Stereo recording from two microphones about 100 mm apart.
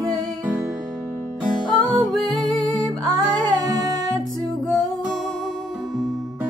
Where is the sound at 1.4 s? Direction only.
5° left (ahead or behind).